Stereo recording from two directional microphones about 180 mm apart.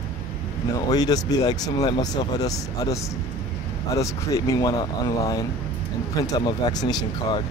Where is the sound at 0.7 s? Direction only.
20° left (ahead or behind).